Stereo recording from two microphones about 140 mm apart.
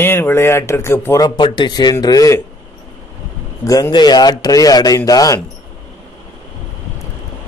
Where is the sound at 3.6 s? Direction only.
25° left (ahead or behind).